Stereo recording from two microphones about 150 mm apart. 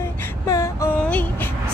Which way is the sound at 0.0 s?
20° left (ahead or behind).